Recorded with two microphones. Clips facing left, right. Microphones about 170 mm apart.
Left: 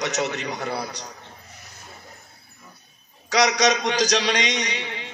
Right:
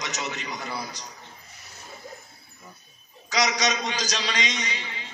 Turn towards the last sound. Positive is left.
turn(degrees=70)  # may be behind; listen again after turning